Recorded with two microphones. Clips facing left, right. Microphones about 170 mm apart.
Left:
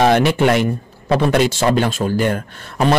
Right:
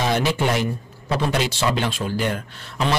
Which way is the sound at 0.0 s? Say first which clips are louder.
Left 7 dB; 65° left (ahead or behind).